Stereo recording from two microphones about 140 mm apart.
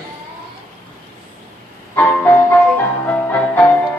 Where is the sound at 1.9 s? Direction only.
10° left (ahead or behind).